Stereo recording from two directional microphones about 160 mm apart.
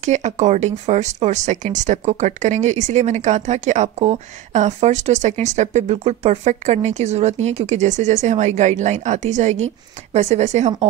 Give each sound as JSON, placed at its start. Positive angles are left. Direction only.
{"t": 0.0, "sound": "speech", "side_deg": -45}